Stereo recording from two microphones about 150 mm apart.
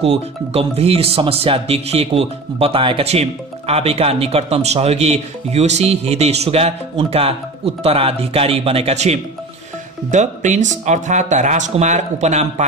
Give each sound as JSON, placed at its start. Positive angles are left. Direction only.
{"t": 0.0, "sound": "speech", "side_deg": -40}